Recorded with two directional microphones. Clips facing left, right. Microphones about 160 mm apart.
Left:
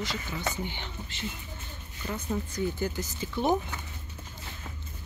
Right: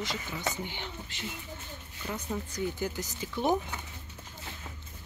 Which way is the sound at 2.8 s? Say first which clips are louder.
Left 2 dB; 10° right (ahead or behind).